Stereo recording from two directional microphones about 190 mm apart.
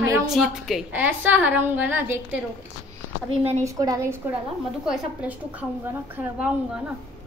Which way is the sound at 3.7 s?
20° right (ahead or behind).